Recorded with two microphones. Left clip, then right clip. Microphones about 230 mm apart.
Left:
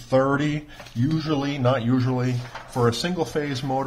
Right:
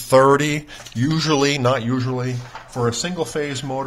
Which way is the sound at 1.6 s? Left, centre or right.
Centre.